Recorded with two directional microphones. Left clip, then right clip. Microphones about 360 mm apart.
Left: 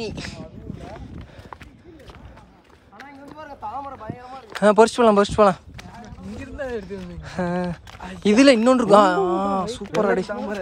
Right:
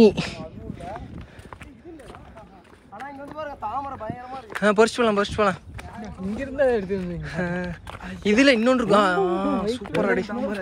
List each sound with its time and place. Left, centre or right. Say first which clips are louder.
0.0 s speech: right 14 dB; centre
3.0 s speech: right 5 dB; centre
6.4 s speech: right 9 dB; centre
7.2 s speech: left 5 dB; centre